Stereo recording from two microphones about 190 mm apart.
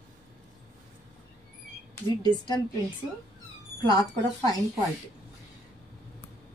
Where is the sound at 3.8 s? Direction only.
20° left (ahead or behind).